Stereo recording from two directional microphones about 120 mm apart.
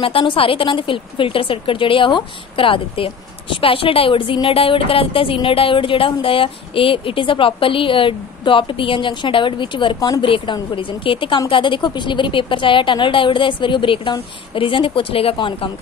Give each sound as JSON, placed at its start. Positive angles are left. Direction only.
{"t": 0.0, "sound": "a woman's voice", "side_deg": 45}
{"t": 9.9, "sound": "speech", "side_deg": 30}
{"t": 10.2, "sound": "a woman's voice", "side_deg": 45}